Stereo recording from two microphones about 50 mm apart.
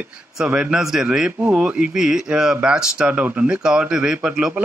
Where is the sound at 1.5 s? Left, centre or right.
Right.